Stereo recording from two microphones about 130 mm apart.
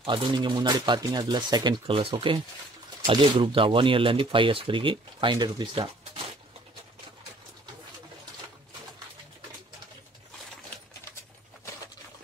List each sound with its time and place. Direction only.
0.0 s speech: 35° right (ahead or behind)